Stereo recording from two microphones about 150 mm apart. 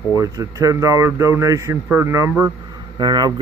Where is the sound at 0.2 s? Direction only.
20° right (ahead or behind).